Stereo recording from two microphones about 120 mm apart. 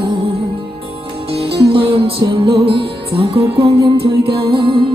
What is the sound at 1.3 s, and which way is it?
Music, 50° right (ahead or behind).